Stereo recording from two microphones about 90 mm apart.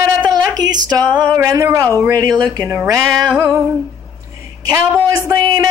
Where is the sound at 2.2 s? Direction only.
45° right (ahead or behind).